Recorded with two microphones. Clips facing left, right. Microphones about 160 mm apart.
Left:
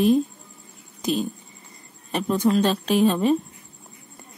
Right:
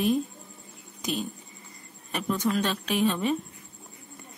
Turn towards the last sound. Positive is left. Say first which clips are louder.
# left 6 dB
turn(degrees=35)  # may be behind; listen again after turning